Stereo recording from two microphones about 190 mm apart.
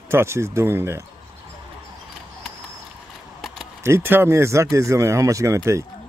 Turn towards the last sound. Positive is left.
turn(degrees=-15)  # may be behind; listen again after turning